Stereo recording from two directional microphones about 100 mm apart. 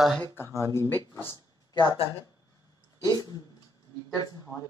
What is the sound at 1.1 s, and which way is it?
Speech, 40° right (ahead or behind).